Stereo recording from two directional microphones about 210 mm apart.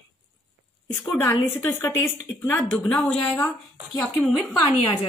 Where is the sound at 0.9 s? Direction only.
10° left (ahead or behind).